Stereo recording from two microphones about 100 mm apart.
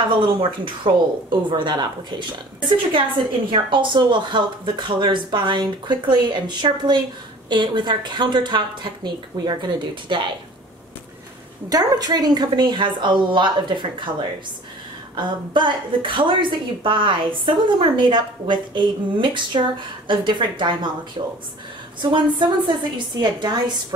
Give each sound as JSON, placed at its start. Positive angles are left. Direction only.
{"t": 0.2, "sound": "a woman's voice", "side_deg": -60}
{"t": 3.4, "sound": "a woman's voice", "side_deg": -55}
{"t": 11.7, "sound": "a woman's voice", "side_deg": -40}
{"t": 15.1, "sound": "a woman's voice", "side_deg": -50}
{"t": 22.0, "sound": "a woman's voice", "side_deg": -50}